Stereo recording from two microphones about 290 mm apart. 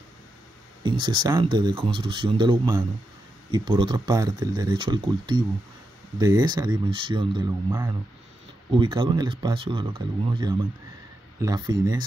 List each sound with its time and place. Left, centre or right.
0.8 s speech: centre